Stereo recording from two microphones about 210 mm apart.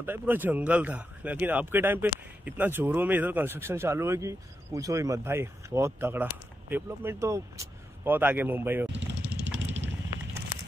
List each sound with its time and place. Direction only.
0.0 s speech: 10° right (ahead or behind)
9.2 s vehicle: 5° right (ahead or behind)
9.6 s a sound: 60° right (ahead or behind)